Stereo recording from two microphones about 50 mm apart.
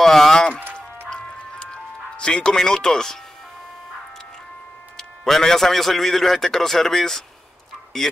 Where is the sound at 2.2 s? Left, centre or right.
Centre.